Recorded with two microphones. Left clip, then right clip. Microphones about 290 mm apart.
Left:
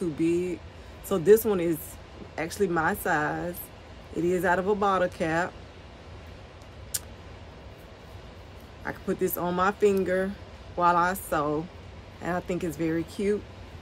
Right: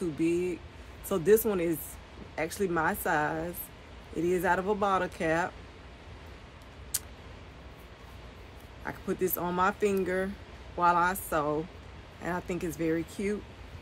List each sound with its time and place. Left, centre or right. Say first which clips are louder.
0.0 s speech: left 3 dB; centre
6.9 s vehicle: left 2 dB; centre
8.8 s speech: left 3 dB; centre